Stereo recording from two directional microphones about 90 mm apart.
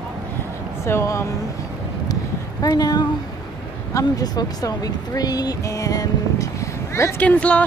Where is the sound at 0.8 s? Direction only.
30° left (ahead or behind).